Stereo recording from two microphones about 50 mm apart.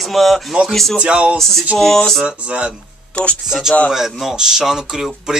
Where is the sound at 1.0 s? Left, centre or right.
Right.